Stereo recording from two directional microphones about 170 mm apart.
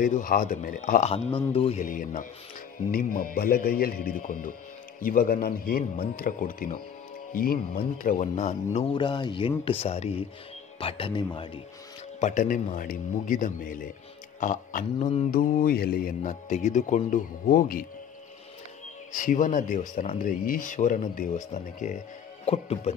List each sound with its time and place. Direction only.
0.0 s speech: 55° left (ahead or behind)
1.1 s speech: 35° left (ahead or behind)
1.9 s a man's voice: 50° left (ahead or behind)
8.9 s speech: 25° left (ahead or behind)
12.2 s a man's voice: 50° left (ahead or behind)
16.2 s speech: 45° left (ahead or behind)
19.1 s speech: 50° left (ahead or behind)